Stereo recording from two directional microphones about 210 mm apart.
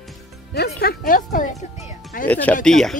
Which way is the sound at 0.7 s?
45° left (ahead or behind).